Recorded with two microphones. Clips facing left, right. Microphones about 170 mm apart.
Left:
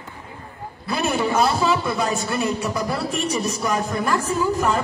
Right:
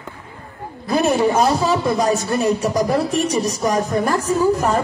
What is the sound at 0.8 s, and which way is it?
A man's voice, 40° right (ahead or behind).